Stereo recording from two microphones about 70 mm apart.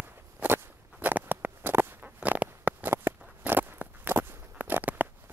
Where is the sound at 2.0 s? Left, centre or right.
Right.